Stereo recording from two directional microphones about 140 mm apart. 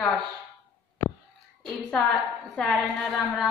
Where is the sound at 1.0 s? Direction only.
20° left (ahead or behind).